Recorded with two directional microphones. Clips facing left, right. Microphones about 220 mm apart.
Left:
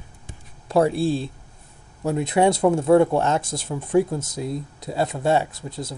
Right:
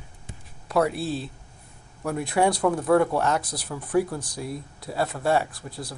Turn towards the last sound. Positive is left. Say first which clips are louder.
# left 3 dB
turn(degrees=25)  # may be behind; listen again after turning